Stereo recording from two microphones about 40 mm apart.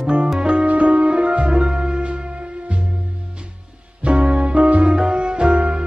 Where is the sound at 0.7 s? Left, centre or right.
Right.